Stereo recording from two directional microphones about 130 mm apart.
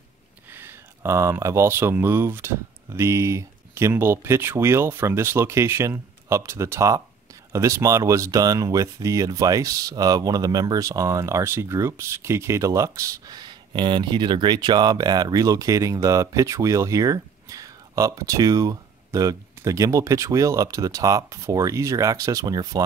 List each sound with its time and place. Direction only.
0.5 s speech: 15° right (ahead or behind)